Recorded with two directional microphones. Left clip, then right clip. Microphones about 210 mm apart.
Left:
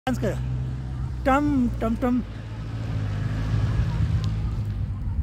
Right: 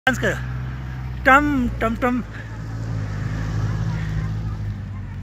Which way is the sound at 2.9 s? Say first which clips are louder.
Right 2 dB; 50° right (ahead or behind).